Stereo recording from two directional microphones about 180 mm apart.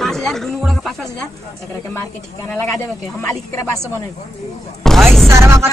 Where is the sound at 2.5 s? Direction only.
10° left (ahead or behind).